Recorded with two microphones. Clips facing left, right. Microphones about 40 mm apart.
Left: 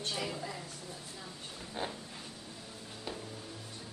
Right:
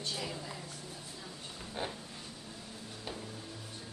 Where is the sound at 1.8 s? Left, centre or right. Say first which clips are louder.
Even; centre.